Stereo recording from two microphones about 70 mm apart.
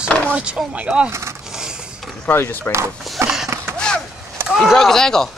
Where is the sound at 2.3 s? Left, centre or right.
Left.